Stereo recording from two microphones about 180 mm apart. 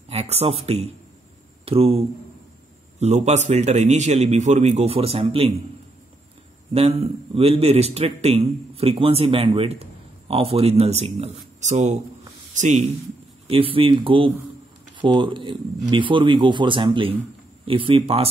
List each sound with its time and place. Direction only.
0.1 s a man's voice: 35° right (ahead or behind)
6.7 s a man's voice: 35° right (ahead or behind)